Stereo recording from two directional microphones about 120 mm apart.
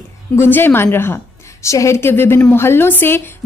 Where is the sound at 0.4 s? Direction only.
15° left (ahead or behind).